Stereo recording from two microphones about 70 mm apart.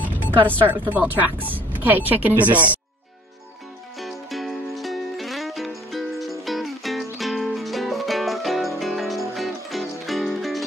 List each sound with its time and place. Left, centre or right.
0.0 s music: left
0.7 s speech: right
4.0 s music: centre